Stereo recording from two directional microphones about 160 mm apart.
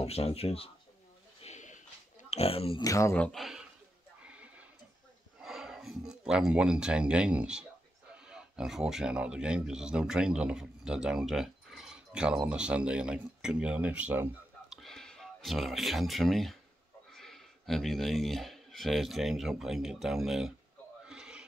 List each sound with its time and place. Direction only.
0.0 s speech: 40° left (ahead or behind)
1.4 s a sound: 50° left (ahead or behind)
2.2 s speech: 40° left (ahead or behind)
2.8 s speech: 20° left (ahead or behind)
3.2 s speech: centre (ahead or behind)
4.2 s a sound: 10° right (ahead or behind)
5.4 s speech: 5° right (ahead or behind)
14.8 s speech: 5° left (ahead or behind)
21.0 s a sound: 5° right (ahead or behind)